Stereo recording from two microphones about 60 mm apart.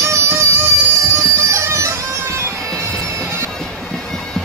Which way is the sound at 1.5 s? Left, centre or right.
Right.